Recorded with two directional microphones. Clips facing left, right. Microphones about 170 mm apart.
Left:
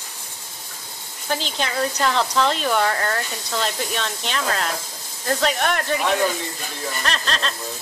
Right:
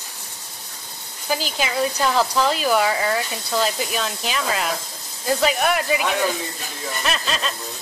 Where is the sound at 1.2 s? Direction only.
5° right (ahead or behind).